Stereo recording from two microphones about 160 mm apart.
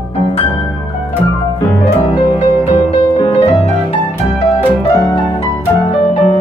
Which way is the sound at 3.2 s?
35° left (ahead or behind).